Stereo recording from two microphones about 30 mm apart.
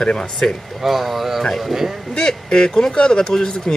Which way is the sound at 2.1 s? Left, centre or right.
Left.